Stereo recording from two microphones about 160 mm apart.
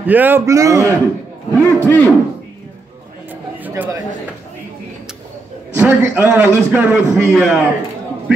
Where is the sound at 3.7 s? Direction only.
10° right (ahead or behind).